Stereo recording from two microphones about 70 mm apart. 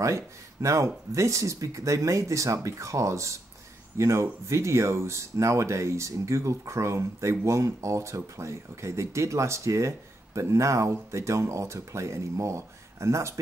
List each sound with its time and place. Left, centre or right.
0.0 s speech: right